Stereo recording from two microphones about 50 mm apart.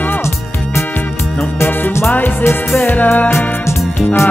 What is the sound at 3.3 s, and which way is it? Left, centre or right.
Music, left.